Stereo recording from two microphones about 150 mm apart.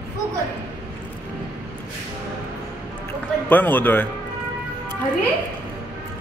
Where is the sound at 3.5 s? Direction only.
10° left (ahead or behind).